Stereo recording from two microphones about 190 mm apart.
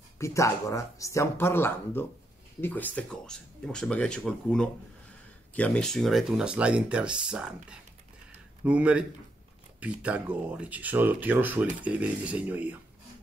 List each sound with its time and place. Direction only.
0.2 s speech: 15° left (ahead or behind); by 12.7 s 5° right (ahead or behind)